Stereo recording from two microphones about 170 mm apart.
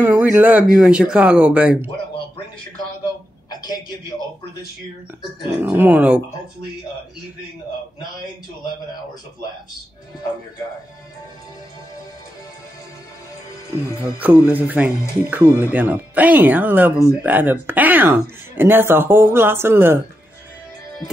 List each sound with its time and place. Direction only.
0.0 s speech: 10° right (ahead or behind)
3.4 s a sound: 25° left (ahead or behind)
5.6 s speech: 10° right (ahead or behind)
14.1 s speech: 10° right (ahead or behind)